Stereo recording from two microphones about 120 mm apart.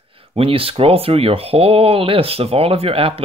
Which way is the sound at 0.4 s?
50° right (ahead or behind).